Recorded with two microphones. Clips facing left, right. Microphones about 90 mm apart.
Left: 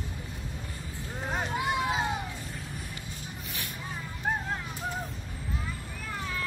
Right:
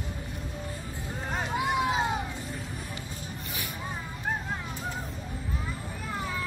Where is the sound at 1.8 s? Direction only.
15° right (ahead or behind).